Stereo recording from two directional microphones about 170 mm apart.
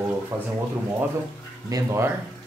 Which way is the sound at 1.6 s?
20° right (ahead or behind).